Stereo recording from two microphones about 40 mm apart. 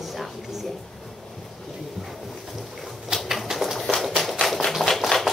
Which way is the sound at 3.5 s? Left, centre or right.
Centre.